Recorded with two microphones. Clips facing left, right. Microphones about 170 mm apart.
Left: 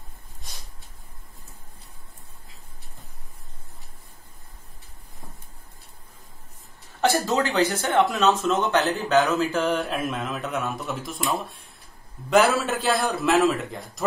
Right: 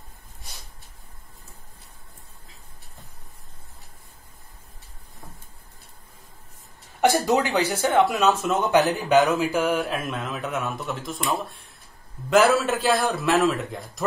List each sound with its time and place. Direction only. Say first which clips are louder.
7.0 s a man's voice: right 2 dB; 15° right (ahead or behind); by 14.0 s centre (ahead or behind)